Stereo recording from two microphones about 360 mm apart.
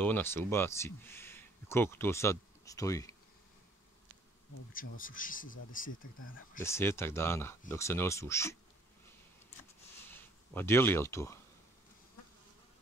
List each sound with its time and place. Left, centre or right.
0.0 s speech: centre
4.7 s speech: left
6.1 s speech: left
6.6 s speech: centre
10.1 s speech: centre